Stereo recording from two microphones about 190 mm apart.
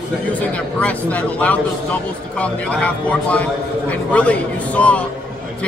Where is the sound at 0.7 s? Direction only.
5° left (ahead or behind).